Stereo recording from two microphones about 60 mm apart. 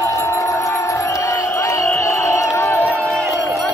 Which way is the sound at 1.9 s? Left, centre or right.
Left.